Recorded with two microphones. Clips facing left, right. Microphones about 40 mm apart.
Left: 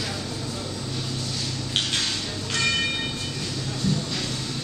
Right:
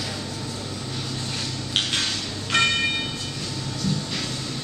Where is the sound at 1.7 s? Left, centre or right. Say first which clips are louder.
Right 2 dB; centre.